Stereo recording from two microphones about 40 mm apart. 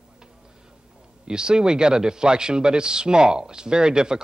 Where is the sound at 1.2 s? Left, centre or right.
Centre.